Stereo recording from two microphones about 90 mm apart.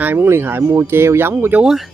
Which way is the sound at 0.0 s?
25° right (ahead or behind).